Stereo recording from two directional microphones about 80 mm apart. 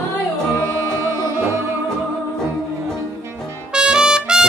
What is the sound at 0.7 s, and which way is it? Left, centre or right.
Music, right.